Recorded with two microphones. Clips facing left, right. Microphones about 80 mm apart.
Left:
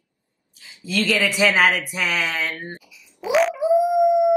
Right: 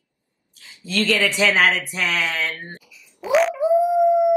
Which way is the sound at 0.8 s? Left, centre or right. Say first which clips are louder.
Right 1 dB; centre.